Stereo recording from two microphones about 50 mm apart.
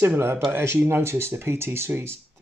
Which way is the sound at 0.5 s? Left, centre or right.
Right.